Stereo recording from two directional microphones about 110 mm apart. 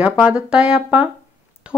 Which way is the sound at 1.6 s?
10° right (ahead or behind).